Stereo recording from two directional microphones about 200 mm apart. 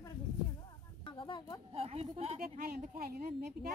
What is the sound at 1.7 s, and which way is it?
Speech, 30° right (ahead or behind).